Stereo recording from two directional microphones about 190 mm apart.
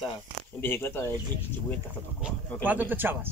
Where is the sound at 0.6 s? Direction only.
10° left (ahead or behind).